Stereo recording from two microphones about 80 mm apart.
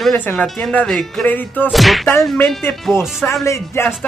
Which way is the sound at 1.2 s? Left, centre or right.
Left.